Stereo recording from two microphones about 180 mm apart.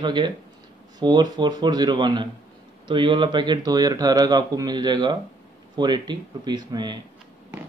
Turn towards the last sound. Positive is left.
turn(degrees=-25)  # may be behind; listen again after turning